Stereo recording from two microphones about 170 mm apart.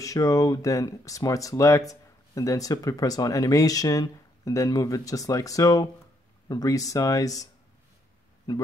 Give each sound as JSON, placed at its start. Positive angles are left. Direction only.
{"t": 0.0, "sound": "speech", "side_deg": 20}
{"t": 8.5, "sound": "speech", "side_deg": 20}